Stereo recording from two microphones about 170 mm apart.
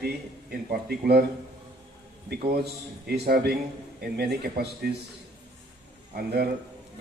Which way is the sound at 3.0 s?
70° right (ahead or behind).